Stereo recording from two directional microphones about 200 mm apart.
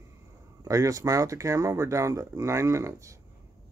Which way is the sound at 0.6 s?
15° right (ahead or behind).